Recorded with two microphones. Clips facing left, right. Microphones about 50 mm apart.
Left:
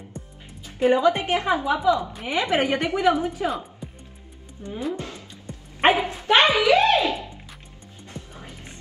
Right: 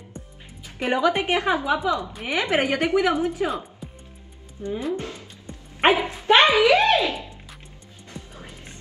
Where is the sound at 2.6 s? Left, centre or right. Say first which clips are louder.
Right 2 dB; centre.